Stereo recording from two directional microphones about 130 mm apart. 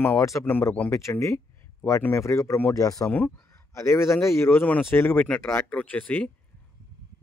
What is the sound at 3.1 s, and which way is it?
Speech, 15° left (ahead or behind).